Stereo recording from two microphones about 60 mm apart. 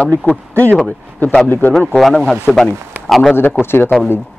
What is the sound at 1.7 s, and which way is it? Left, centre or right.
A man's voice, centre.